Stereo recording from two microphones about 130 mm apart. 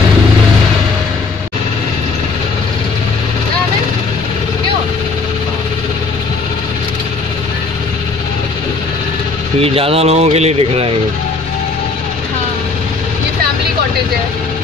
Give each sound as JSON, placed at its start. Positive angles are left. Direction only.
{"t": 9.6, "sound": "speech", "side_deg": -50}